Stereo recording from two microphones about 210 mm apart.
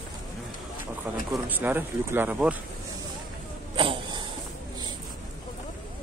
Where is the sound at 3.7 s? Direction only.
25° right (ahead or behind).